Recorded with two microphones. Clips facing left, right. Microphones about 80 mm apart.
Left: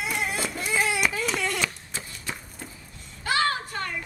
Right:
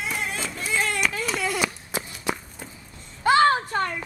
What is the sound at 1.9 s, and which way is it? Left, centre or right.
Walk, right.